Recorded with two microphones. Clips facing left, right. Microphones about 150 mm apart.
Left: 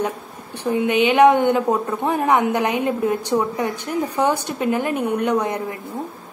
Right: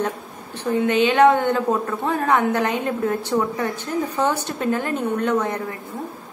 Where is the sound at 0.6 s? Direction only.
15° left (ahead or behind).